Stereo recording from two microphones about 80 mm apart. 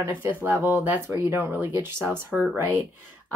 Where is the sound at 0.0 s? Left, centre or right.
Right.